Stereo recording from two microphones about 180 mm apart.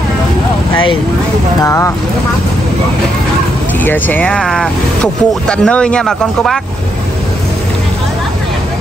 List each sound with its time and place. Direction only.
1.6 s speech: 15° left (ahead or behind)
3.8 s speech: 10° left (ahead or behind)